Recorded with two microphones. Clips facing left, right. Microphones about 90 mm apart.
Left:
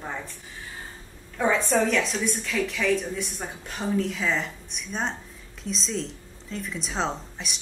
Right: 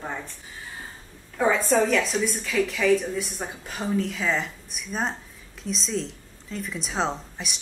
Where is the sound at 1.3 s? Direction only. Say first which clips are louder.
Right 2 dB; centre (ahead or behind).